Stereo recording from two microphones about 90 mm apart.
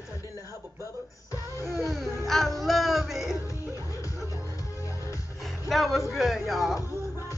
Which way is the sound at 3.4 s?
35° left (ahead or behind).